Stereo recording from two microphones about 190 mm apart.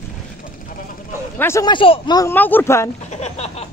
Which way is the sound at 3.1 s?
35° left (ahead or behind).